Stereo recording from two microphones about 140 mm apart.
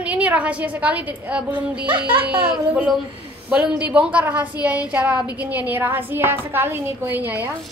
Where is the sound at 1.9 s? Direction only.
35° right (ahead or behind).